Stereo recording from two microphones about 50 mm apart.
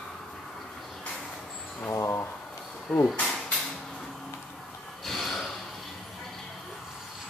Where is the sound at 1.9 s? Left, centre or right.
Left.